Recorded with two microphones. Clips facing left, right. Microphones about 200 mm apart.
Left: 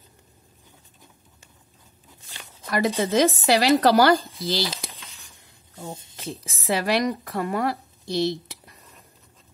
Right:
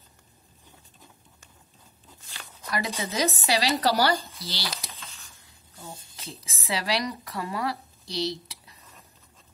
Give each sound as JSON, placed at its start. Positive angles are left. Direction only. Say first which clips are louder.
{"t": 2.7, "sound": "speech", "louder": "left 9 dB", "side_deg": 50}
{"t": 4.9, "sound": "a sound", "louder": "even", "side_deg": 15}
{"t": 5.9, "sound": "speech", "louder": "left 7 dB", "side_deg": 25}
{"t": 6.4, "sound": "a woman's voice", "louder": "left 6 dB", "side_deg": 50}